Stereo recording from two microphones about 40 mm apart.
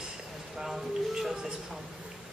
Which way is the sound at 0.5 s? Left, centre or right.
Centre.